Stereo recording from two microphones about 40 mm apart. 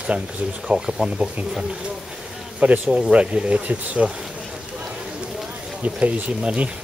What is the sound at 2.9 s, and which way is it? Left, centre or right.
Speech, right.